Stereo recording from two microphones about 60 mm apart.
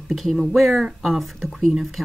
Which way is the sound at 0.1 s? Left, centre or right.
Centre.